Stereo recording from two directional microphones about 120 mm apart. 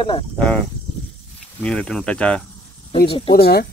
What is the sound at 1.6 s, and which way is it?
Speech, 5° left (ahead or behind).